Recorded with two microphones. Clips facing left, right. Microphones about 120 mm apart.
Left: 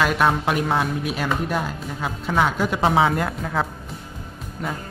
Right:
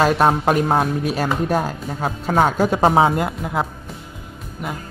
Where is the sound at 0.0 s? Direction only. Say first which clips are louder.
Right 4 dB; 35° right (ahead or behind); by 3.5 s 20° right (ahead or behind).